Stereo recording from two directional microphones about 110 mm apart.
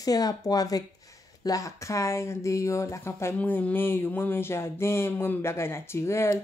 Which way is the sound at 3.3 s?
15° left (ahead or behind).